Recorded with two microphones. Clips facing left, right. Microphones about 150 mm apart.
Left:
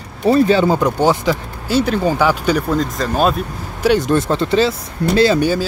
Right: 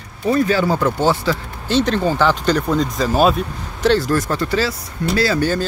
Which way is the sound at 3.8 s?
20° left (ahead or behind).